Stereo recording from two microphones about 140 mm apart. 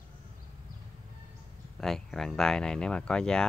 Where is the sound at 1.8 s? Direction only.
Centre (ahead or behind).